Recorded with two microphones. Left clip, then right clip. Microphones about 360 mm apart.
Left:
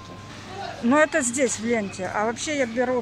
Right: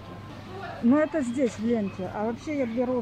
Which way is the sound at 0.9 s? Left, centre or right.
Left.